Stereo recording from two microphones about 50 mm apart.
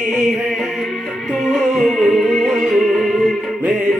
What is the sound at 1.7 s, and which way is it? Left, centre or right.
Music, centre.